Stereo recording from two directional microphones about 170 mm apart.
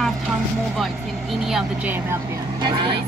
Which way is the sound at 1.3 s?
Centre (ahead or behind).